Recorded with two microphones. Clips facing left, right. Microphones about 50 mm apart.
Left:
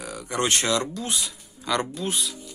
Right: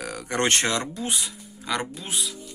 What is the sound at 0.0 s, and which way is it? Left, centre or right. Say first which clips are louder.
Speech: right 1 dB; right.